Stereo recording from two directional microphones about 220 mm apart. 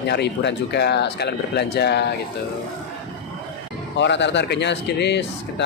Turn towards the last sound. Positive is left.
turn(degrees=50)  # may be behind; listen again after turning